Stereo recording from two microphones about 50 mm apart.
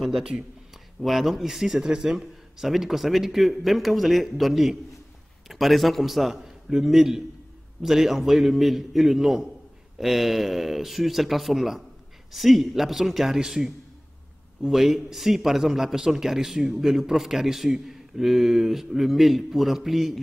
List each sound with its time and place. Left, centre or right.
0.2 s a man's voice: centre
1.0 s a man's voice: centre